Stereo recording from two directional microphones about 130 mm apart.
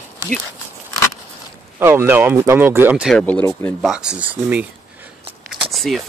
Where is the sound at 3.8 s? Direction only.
5° right (ahead or behind).